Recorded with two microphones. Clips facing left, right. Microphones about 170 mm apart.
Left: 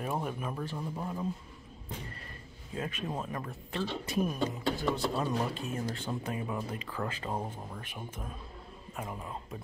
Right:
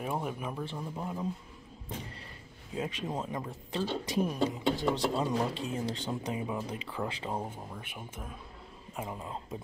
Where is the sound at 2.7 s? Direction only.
20° right (ahead or behind).